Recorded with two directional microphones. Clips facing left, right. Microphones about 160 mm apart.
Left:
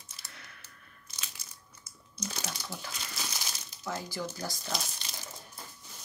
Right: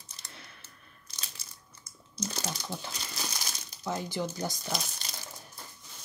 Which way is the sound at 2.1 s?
25° right (ahead or behind).